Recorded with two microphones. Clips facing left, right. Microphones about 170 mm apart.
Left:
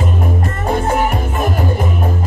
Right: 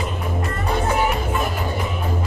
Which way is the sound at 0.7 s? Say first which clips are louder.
Left 4 dB; 50° left (ahead or behind).